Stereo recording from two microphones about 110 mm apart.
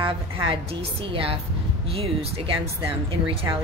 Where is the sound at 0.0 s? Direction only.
50° right (ahead or behind).